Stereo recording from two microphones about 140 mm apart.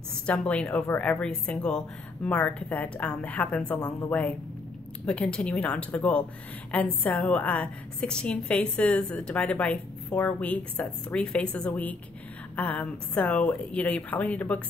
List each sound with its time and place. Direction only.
0.3 s a woman's voice: 10° left (ahead or behind)